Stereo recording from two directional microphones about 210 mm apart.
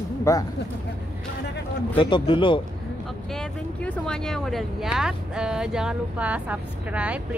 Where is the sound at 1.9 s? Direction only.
25° left (ahead or behind).